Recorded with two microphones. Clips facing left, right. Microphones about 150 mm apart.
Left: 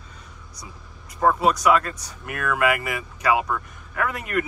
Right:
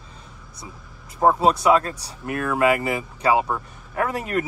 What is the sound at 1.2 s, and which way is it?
Speech, 25° right (ahead or behind).